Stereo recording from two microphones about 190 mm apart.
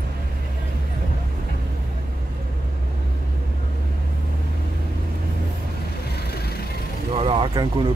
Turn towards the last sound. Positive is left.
turn(degrees=-25)  # may be behind; listen again after turning